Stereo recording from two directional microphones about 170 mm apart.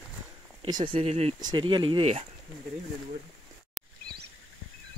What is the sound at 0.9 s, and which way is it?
Speech, 35° right (ahead or behind).